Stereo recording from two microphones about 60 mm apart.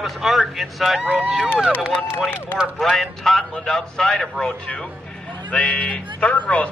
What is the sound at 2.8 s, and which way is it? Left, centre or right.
A man's voice, centre.